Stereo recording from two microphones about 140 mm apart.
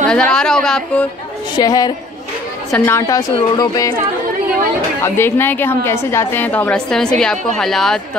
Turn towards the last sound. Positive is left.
turn(degrees=5)  # may be behind; listen again after turning